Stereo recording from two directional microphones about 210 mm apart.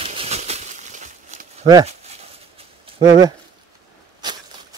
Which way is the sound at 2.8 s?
20° right (ahead or behind).